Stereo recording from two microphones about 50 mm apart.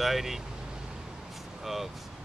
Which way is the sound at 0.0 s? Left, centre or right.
Centre.